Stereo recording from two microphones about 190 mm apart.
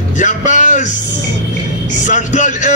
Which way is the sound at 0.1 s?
40° left (ahead or behind).